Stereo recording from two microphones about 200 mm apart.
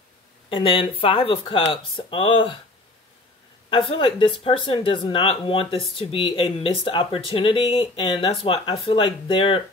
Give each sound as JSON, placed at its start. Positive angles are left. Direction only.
{"t": 0.5, "sound": "speech", "side_deg": 25}
{"t": 3.9, "sound": "speech", "side_deg": 25}